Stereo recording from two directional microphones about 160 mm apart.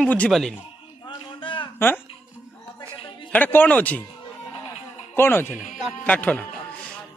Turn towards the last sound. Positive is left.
turn(degrees=10)  # may be behind; listen again after turning